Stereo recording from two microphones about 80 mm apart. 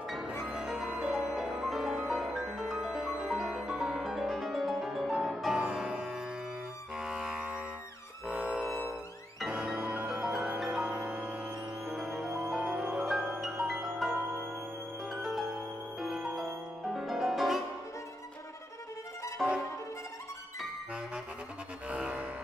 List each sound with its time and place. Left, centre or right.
0.3 s music: centre
13.0 s music: centre
19.4 s music: centre
21.8 s music: centre